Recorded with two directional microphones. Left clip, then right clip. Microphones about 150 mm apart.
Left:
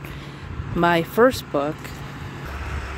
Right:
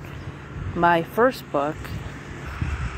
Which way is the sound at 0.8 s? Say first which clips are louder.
Left 1 dB; 25° left (ahead or behind).